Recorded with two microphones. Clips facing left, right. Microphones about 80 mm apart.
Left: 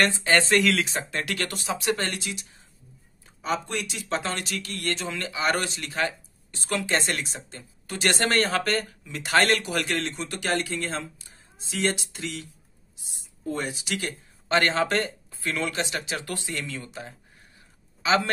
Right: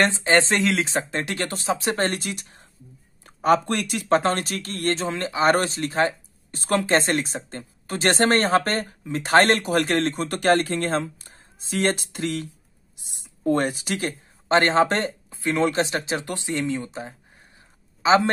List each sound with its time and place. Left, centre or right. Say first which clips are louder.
0.0 s speech: right 3 dB; right
12.9 s a sound: right 2 dB; right
13.7 s speech: right 5 dB; right
13.9 s speech: right 4 dB; right